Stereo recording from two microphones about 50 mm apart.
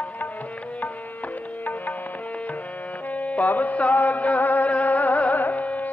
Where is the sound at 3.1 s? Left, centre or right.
Left.